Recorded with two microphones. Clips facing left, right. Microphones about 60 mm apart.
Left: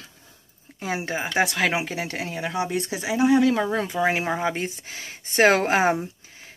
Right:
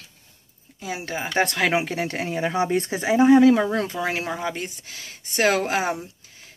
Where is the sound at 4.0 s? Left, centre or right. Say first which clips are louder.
Left 3 dB; left.